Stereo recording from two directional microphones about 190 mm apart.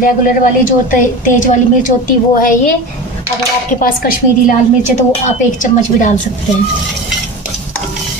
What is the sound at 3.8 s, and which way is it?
A woman's voice, 45° left (ahead or behind).